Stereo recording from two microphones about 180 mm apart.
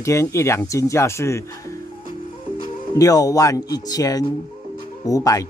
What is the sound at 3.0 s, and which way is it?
Speech, 20° left (ahead or behind).